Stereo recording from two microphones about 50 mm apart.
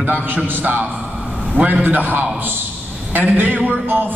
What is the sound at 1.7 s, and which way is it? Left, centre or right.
A man's voice, right.